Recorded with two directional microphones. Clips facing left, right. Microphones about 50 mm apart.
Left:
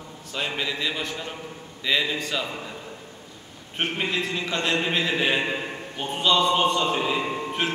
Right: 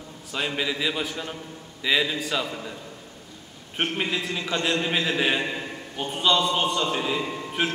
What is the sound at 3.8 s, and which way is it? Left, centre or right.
Speech, centre.